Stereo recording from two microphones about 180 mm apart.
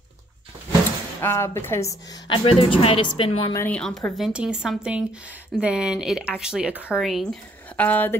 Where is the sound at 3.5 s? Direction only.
10° left (ahead or behind).